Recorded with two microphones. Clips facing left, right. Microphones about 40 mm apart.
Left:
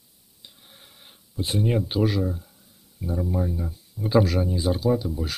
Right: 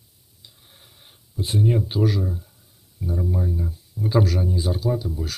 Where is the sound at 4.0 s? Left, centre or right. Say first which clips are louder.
Right 3 dB; left.